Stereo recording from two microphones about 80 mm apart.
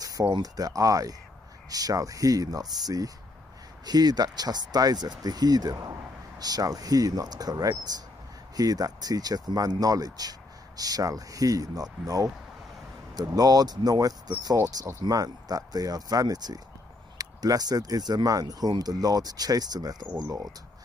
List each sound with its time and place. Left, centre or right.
0.4 s speech: right